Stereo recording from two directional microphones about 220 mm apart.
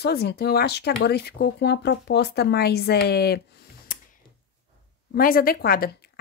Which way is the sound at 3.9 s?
40° left (ahead or behind).